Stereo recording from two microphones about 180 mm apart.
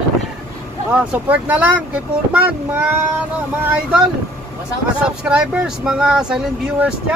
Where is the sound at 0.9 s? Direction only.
10° right (ahead or behind).